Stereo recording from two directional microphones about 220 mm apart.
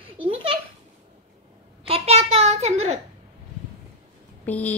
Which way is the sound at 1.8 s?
25° right (ahead or behind).